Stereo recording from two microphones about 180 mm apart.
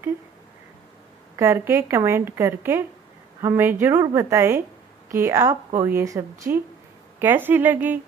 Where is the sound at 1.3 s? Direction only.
15° right (ahead or behind).